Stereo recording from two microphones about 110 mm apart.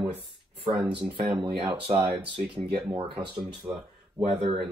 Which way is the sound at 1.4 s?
45° right (ahead or behind).